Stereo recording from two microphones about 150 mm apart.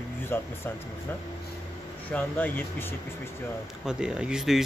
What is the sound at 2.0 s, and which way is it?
Speech, 10° left (ahead or behind).